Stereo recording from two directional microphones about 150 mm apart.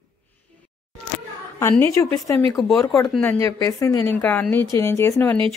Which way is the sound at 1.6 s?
15° left (ahead or behind).